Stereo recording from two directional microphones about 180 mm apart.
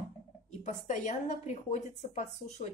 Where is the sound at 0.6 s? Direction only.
40° left (ahead or behind).